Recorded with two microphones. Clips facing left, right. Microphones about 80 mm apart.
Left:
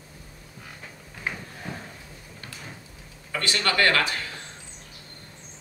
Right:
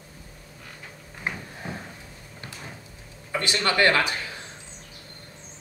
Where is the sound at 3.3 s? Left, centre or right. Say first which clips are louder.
Right 1 dB; right.